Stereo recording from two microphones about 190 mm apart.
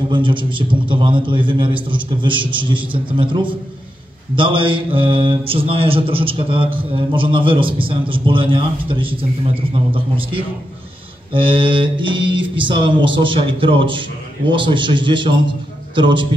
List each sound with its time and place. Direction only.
0.1 s a man's voice: 25° right (ahead or behind)
11.3 s a man's voice: 25° right (ahead or behind)